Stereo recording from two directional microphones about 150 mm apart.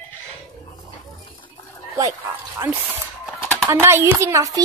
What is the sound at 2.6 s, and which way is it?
A child's voice, 15° right (ahead or behind).